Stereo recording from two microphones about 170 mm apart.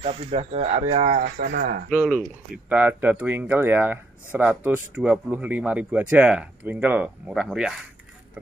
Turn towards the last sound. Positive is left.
turn(degrees=-5)  # may be behind; listen again after turning